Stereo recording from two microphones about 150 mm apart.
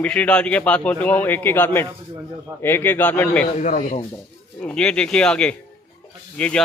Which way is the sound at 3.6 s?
55° left (ahead or behind).